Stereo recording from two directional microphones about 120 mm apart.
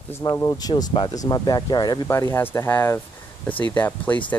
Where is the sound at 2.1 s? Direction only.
20° left (ahead or behind).